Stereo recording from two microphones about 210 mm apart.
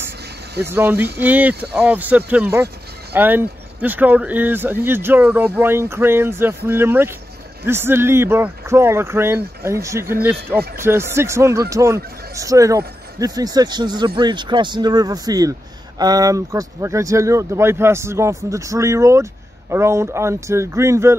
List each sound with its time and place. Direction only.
0.7 s speech: 10° right (ahead or behind)